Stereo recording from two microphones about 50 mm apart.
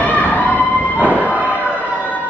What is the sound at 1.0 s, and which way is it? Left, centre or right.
Train, left.